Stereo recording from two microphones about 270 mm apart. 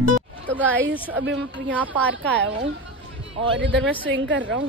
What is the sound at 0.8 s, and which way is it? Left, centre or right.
Speech, right.